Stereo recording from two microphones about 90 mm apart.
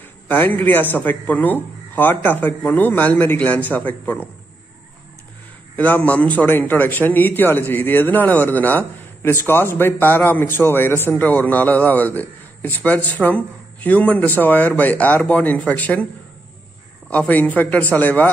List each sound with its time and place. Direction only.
0.3 s a man's voice: 20° left (ahead or behind)
5.8 s a man's voice: 15° left (ahead or behind)
17.1 s speech: 15° left (ahead or behind)